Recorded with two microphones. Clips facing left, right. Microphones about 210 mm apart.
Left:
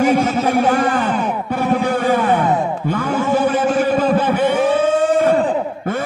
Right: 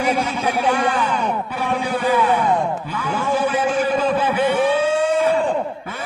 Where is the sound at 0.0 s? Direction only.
45° left (ahead or behind).